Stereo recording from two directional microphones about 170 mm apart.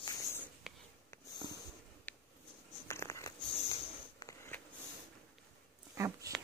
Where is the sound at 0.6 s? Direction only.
Centre (ahead or behind).